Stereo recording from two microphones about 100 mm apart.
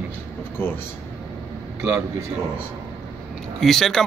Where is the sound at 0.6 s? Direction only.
20° left (ahead or behind).